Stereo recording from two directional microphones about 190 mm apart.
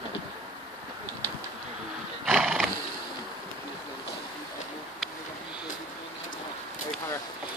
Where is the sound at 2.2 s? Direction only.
5° right (ahead or behind).